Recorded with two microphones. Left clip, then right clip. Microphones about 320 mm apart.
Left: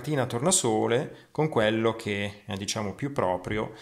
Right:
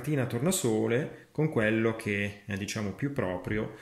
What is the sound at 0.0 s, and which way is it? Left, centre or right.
Speech, centre.